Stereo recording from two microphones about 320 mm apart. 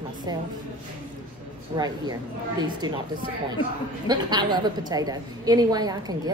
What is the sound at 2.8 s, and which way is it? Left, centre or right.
Speech, centre.